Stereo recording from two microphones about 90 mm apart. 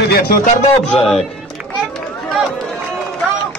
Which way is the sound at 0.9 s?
5° left (ahead or behind).